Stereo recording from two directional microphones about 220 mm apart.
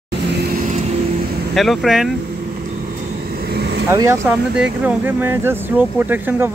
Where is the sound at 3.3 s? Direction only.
45° right (ahead or behind).